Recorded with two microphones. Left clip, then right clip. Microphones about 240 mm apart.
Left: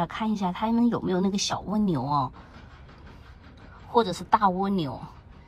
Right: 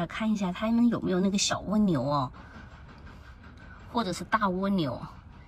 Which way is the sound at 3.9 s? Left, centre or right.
Centre.